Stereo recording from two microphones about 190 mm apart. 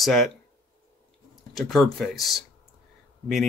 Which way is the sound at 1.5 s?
Centre (ahead or behind).